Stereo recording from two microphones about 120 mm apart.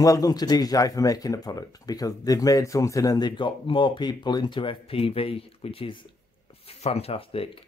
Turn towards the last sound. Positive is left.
turn(degrees=50)  # may be behind; listen again after turning